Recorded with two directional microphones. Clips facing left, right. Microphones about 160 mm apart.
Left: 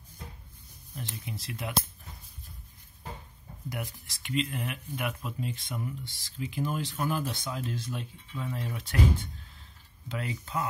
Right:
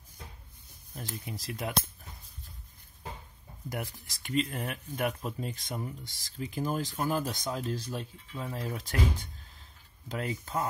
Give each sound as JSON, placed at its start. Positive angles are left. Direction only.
{"t": 1.1, "sound": "speech", "side_deg": -45}
{"t": 3.7, "sound": "speech", "side_deg": -40}